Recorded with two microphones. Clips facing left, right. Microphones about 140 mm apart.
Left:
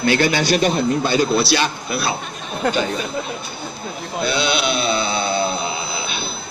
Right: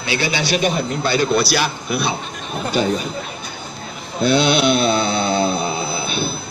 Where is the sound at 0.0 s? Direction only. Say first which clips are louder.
Left 4 dB; 50° left (ahead or behind).